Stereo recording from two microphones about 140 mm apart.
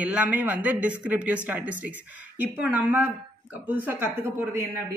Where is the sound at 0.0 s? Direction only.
10° right (ahead or behind).